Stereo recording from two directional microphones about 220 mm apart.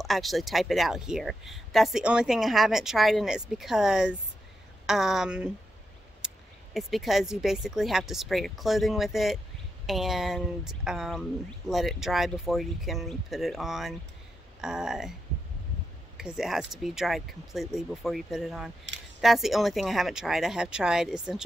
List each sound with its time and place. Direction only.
0.0 s speech: centre (ahead or behind)
16.2 s speech: centre (ahead or behind)
18.9 s speech: 55° right (ahead or behind)
19.2 s speech: centre (ahead or behind)